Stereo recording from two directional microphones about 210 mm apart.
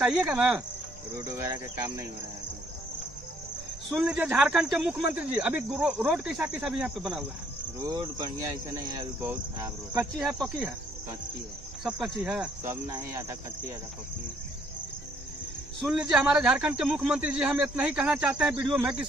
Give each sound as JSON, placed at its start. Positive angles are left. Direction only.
{"t": 0.0, "sound": "speech", "side_deg": -5}
{"t": 3.9, "sound": "speech", "side_deg": -5}
{"t": 7.8, "sound": "speech", "side_deg": -20}
{"t": 10.2, "sound": "speech", "side_deg": 0}
{"t": 11.8, "sound": "speech", "side_deg": 0}
{"t": 12.6, "sound": "speech", "side_deg": -15}
{"t": 15.9, "sound": "speech", "side_deg": -5}